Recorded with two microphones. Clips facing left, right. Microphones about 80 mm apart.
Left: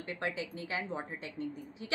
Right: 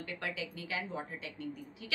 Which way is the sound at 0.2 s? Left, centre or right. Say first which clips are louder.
Left 5 dB; left.